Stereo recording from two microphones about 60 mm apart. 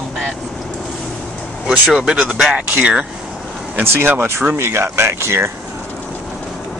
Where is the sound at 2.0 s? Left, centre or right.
Centre.